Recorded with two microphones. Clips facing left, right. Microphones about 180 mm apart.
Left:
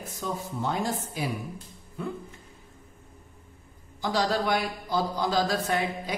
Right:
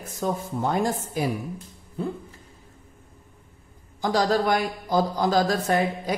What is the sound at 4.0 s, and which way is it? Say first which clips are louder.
A man's voice: right 4 dB; 45° right (ahead or behind).